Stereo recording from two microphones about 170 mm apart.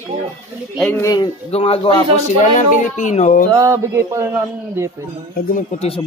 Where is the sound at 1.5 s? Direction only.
35° left (ahead or behind).